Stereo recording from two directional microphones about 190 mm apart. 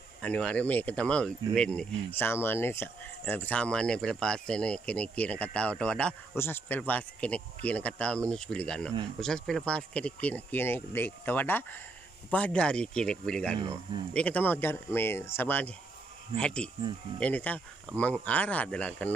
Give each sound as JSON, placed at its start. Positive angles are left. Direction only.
{"t": 0.2, "sound": "speech", "side_deg": 5}
{"t": 13.6, "sound": "speech", "side_deg": -25}
{"t": 14.1, "sound": "speech", "side_deg": 5}